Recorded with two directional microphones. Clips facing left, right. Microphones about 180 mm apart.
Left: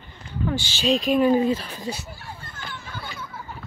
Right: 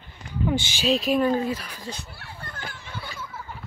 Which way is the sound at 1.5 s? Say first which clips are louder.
Left 5 dB; 25° left (ahead or behind).